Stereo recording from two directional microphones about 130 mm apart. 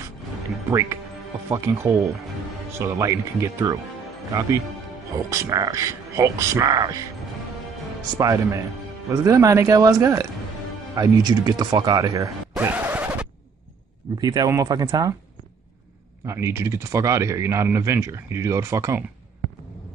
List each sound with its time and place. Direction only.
0.7 s speech: 25° right (ahead or behind)
8.2 s speech: 25° right (ahead or behind)
12.5 s scratch: 15° right (ahead or behind)
14.2 s speech: 30° right (ahead or behind)
16.3 s speech: 20° right (ahead or behind)